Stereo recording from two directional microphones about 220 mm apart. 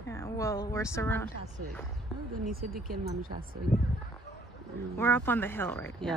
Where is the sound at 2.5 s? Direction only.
40° right (ahead or behind).